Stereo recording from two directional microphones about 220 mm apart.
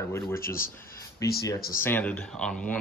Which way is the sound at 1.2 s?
15° left (ahead or behind).